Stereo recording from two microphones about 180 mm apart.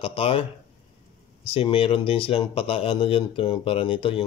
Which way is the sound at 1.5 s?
30° left (ahead or behind).